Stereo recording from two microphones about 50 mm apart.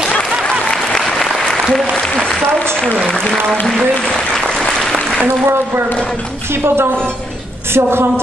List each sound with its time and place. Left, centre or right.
0.7 s applause: centre
6.6 s a woman's voice: right